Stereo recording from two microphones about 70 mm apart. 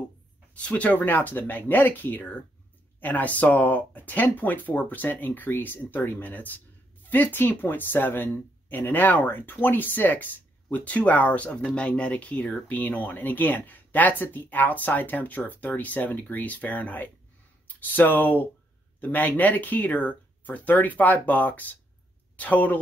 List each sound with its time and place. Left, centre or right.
0.6 s speech: centre